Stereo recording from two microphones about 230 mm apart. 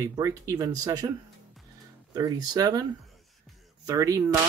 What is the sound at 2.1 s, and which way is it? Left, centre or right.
Speech, centre.